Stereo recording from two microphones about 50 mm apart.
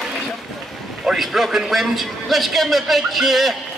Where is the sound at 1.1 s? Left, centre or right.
Centre.